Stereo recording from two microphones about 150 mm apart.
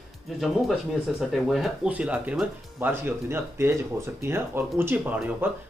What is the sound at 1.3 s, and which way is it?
Speech, centre (ahead or behind).